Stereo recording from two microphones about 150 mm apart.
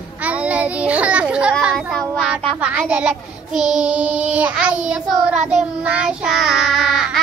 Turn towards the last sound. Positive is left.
turn(degrees=0)  # may be behind; listen again after turning